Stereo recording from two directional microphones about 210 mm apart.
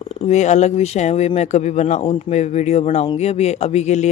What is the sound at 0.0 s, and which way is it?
Speech, 30° left (ahead or behind).